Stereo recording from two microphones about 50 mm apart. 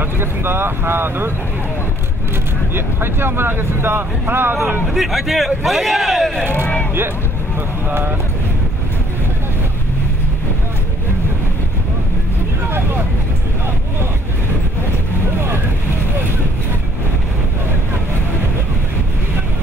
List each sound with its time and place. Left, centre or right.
0.0 s speech: right
2.7 s speech: right
4.8 s a man's voice: centre